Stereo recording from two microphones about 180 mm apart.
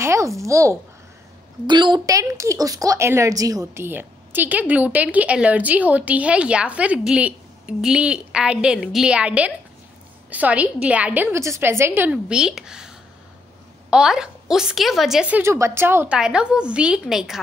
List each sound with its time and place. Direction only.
0.0 s a woman's voice: 15° right (ahead or behind)